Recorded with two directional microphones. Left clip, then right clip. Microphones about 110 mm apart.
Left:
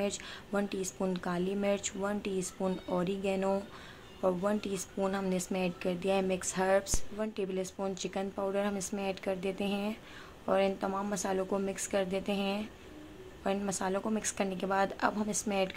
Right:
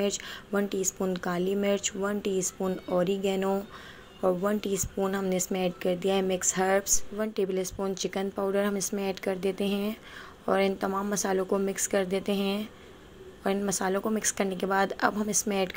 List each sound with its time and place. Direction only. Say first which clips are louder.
0.0 s speech: right 5 dB; 30° right (ahead or behind)
13.7 s speech: right 5 dB; 35° right (ahead or behind)